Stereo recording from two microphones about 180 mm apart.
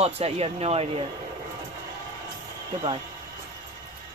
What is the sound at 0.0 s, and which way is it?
Speech, 35° right (ahead or behind).